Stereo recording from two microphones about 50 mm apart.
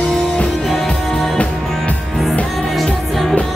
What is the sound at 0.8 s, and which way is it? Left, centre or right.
Music, centre.